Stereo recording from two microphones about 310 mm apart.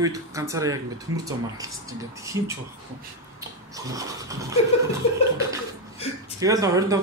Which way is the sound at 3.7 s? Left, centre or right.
Centre.